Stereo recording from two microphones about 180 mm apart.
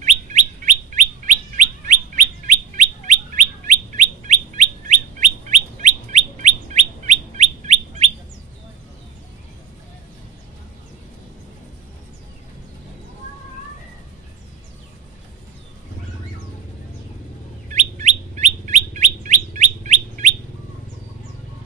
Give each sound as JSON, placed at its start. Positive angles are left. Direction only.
{"t": 0.0, "sound": "bird", "side_deg": -40}
{"t": 17.7, "sound": "bird", "side_deg": -40}